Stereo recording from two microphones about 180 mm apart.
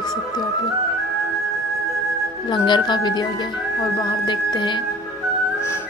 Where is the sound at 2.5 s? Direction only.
25° left (ahead or behind).